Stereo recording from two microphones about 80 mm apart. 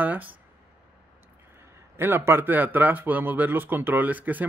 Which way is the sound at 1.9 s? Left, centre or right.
Right.